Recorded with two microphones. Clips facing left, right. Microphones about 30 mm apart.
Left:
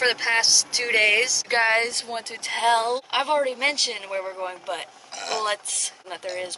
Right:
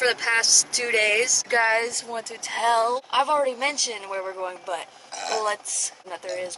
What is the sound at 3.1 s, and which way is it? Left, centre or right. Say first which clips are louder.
Speech: right 1 dB; left.